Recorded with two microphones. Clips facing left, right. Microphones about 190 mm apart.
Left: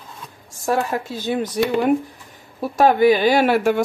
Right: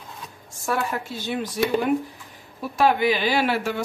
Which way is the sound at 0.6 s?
40° left (ahead or behind).